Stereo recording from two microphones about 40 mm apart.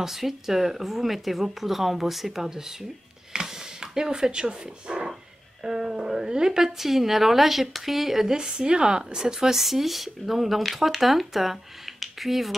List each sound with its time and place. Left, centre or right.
0.0 s speech: centre
3.3 s a sound: centre
5.6 s speech: centre
8.4 s speech: right; by 12.5 s centre